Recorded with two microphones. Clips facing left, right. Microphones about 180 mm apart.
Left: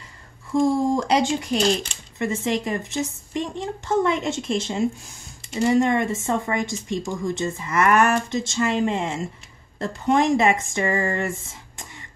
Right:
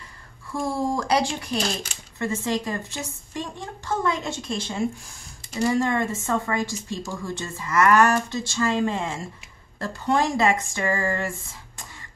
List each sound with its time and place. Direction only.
0.5 s a woman's voice: 20° left (ahead or behind)